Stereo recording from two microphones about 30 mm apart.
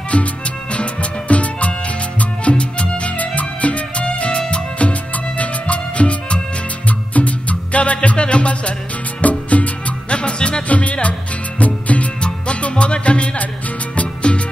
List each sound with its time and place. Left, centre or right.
0.1 s music: left
1.3 s music: left
3.2 s music: left
9.2 s music: left
10.7 s music: left
12.2 s music: left